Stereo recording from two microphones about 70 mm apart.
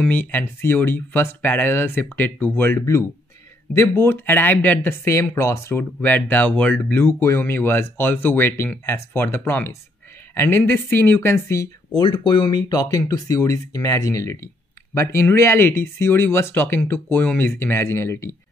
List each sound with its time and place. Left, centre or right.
0.0 s speech: left
2.8 s speech: left
5.0 s speech: left
6.0 s a woman's voice: left
10.6 s speech: left
11.9 s speech: left
12.8 s speech: left
15.0 s speech: left